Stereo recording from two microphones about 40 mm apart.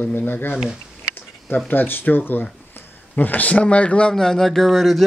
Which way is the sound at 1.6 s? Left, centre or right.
Left.